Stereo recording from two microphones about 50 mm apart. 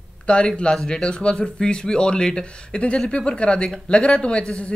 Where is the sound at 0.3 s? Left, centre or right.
Centre.